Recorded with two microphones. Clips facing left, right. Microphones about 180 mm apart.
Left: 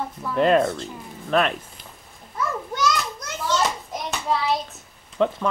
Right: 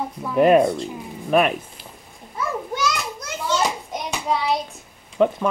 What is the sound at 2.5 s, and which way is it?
Children playing, 10° right (ahead or behind).